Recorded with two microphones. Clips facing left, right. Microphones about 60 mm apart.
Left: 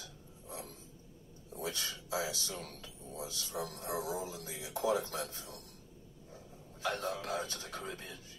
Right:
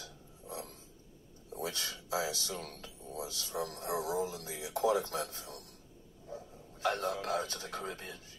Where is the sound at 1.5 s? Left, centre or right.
Right.